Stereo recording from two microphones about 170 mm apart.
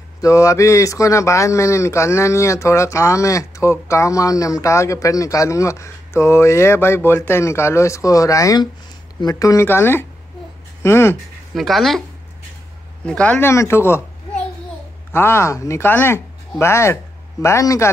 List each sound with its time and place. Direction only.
0.2 s a man's voice: 20° left (ahead or behind)
11.5 s speech: centre (ahead or behind)
13.0 s a child's voice: 5° left (ahead or behind)